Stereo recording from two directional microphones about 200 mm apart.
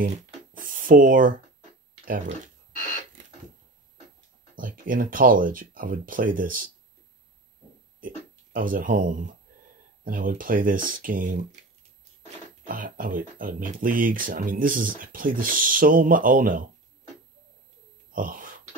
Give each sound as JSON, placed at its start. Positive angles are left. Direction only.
{"t": 0.0, "sound": "a sound", "side_deg": -45}
{"t": 2.0, "sound": "speech", "side_deg": -40}
{"t": 4.6, "sound": "speech", "side_deg": -45}
{"t": 8.5, "sound": "speech", "side_deg": -45}
{"t": 12.6, "sound": "speech", "side_deg": -45}
{"t": 18.1, "sound": "a sound", "side_deg": -45}